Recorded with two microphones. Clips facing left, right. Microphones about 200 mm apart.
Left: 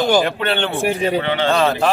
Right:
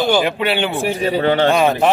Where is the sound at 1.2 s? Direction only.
40° right (ahead or behind).